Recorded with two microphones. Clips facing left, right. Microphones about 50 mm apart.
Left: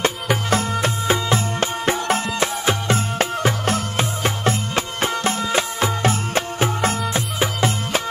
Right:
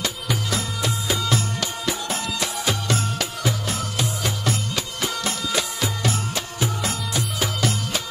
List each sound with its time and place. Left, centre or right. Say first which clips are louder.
0.0 s music: left 6 dB; left